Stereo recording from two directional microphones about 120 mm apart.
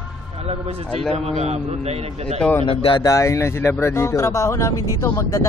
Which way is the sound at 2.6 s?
50° left (ahead or behind).